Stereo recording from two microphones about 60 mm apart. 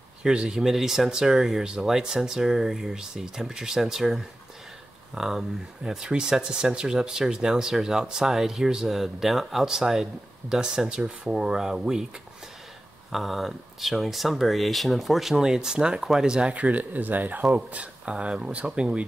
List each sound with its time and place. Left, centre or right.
0.2 s speech: centre
13.1 s speech: centre